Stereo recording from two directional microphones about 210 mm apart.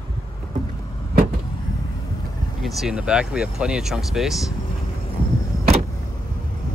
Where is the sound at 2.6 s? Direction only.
Centre (ahead or behind).